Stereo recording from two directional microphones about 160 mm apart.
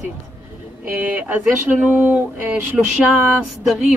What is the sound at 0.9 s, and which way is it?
Speech, 10° right (ahead or behind).